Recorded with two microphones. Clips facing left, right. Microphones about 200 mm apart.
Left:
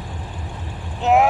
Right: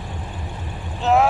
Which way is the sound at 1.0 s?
15° left (ahead or behind).